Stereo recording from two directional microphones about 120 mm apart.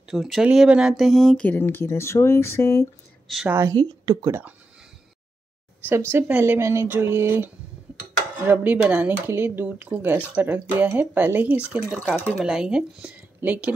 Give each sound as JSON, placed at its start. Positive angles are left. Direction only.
{"t": 0.1, "sound": "speech", "side_deg": -5}
{"t": 3.4, "sound": "speech", "side_deg": -20}
{"t": 3.7, "sound": "speech", "side_deg": -40}
{"t": 4.3, "sound": "speech", "side_deg": -15}
{"t": 5.9, "sound": "speech", "side_deg": -20}
{"t": 12.0, "sound": "speech", "side_deg": 15}
{"t": 12.4, "sound": "speech", "side_deg": -5}